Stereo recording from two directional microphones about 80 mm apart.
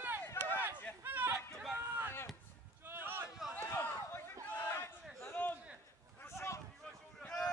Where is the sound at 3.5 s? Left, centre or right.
Left.